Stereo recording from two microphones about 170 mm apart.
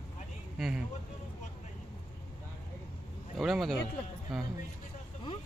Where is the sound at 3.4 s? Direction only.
Centre (ahead or behind).